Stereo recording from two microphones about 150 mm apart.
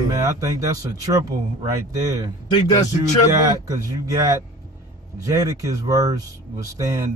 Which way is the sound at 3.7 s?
25° right (ahead or behind).